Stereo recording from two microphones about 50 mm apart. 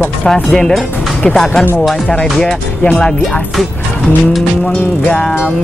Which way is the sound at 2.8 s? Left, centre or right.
Left.